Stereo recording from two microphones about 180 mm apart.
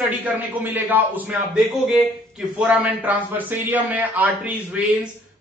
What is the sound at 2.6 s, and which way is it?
A man's voice, 10° right (ahead or behind).